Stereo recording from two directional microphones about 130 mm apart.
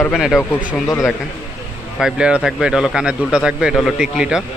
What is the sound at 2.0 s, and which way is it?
A man's voice, 5° right (ahead or behind).